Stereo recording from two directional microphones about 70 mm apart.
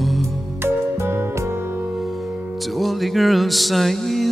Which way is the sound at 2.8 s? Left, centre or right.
Centre.